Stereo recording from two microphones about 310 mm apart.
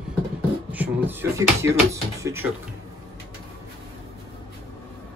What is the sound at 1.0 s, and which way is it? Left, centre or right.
Speech, centre.